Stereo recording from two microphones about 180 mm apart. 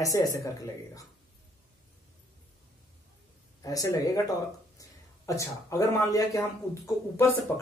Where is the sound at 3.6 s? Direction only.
20° left (ahead or behind).